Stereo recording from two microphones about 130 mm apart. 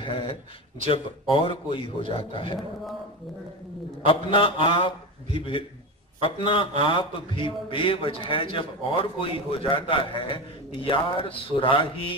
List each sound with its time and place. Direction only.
0.0 s a man's voice: 40° left (ahead or behind)
4.0 s a man's voice: 45° left (ahead or behind)